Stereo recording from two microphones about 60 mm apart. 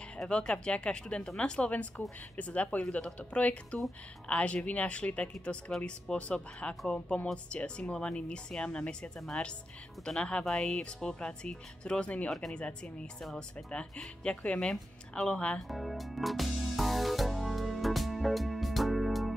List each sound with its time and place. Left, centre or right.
0.3 s speech: centre
10.8 s speech: centre
12.3 s speech: centre
12.5 s speech: centre
15.7 s music: centre